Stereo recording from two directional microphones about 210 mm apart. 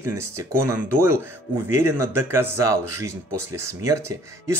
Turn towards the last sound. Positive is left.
turn(degrees=-15)  # may be behind; listen again after turning